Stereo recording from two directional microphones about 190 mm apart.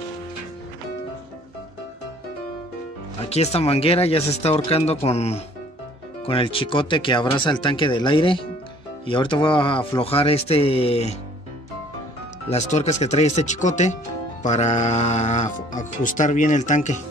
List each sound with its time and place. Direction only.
3.3 s speech: 35° left (ahead or behind)
12.4 s speech: 35° left (ahead or behind)